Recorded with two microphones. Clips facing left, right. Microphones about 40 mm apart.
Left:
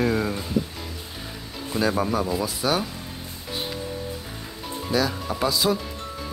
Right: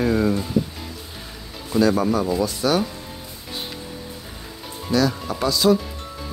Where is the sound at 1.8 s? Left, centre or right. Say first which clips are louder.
Right 4 dB; centre.